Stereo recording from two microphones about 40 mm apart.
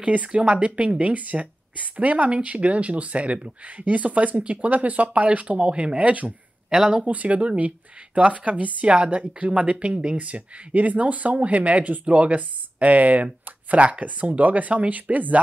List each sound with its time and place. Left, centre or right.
0.0 s a woman's voice: right
8.8 s a woman's voice: right